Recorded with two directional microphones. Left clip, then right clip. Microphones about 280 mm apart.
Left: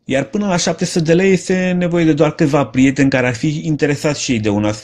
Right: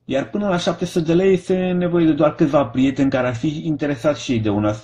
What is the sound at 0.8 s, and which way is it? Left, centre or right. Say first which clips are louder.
Speech: left 5 dB; left.